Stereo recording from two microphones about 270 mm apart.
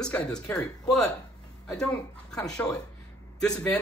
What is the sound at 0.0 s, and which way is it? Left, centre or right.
A man's voice, centre.